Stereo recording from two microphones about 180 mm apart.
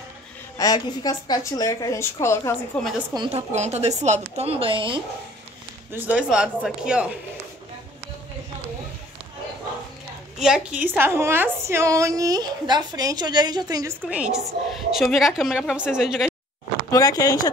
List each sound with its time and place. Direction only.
0.6 s a woman's voice: 20° left (ahead or behind)
3.2 s speech: 35° right (ahead or behind)
5.9 s a woman's voice: 10° right (ahead or behind)
10.4 s a woman's voice: 5° right (ahead or behind); by 13.9 s 20° right (ahead or behind)
14.0 s a woman's voice: 5° right (ahead or behind)
16.9 s a woman's voice: 20° left (ahead or behind)